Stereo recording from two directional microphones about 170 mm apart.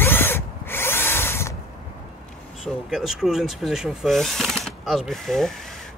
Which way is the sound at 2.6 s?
Centre (ahead or behind).